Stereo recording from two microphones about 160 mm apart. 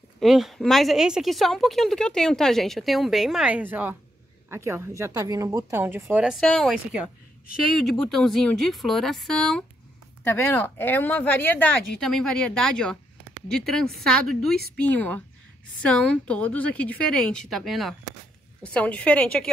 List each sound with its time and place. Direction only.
0.2 s a woman's voice: centre (ahead or behind)
6.2 s a woman's voice: centre (ahead or behind)